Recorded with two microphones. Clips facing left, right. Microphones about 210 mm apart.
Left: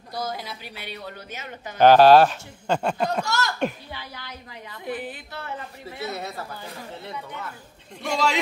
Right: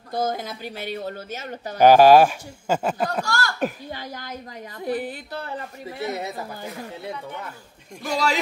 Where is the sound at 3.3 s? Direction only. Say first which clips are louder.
Even; 20° left (ahead or behind).